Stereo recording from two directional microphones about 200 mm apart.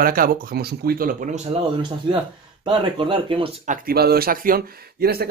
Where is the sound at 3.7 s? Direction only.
50° right (ahead or behind).